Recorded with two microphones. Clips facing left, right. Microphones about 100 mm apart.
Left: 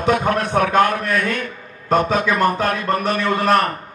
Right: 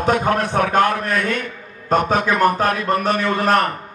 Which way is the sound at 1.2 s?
45° left (ahead or behind).